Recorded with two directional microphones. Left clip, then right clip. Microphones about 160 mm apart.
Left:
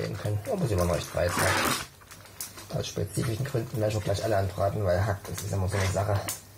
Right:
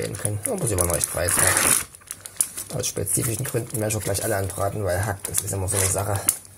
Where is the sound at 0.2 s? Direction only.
30° right (ahead or behind).